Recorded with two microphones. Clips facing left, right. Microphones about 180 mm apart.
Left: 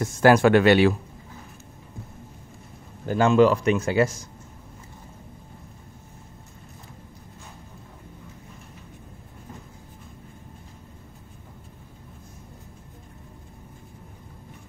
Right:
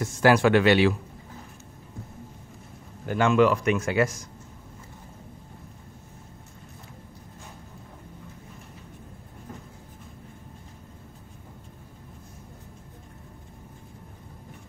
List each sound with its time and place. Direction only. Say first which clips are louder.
0.0 s speech: left 3 dB; 45° left (ahead or behind)
3.1 s speech: left 3 dB; 35° left (ahead or behind)